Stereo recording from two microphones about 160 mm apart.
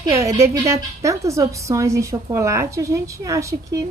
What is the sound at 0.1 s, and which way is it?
A woman's voice, 20° right (ahead or behind).